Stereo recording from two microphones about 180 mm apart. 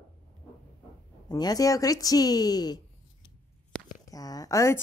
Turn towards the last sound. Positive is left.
turn(degrees=15)  # may be behind; listen again after turning